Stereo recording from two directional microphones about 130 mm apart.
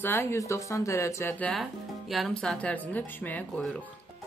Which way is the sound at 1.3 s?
10° left (ahead or behind).